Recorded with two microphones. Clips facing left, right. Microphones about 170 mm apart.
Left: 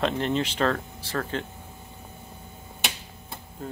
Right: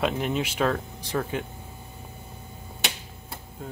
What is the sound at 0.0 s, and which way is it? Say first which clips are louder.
Speech: left 1 dB; 5° right (ahead or behind).